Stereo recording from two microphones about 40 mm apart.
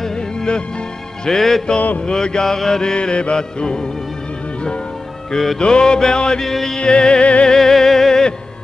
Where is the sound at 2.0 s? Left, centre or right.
Centre.